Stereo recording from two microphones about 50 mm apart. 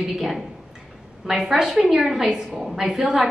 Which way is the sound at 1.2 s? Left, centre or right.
Centre.